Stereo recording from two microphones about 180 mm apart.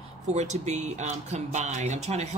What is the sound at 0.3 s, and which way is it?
Speech, 40° right (ahead or behind).